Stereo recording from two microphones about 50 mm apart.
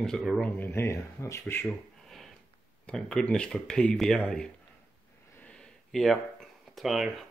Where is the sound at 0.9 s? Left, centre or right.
Left.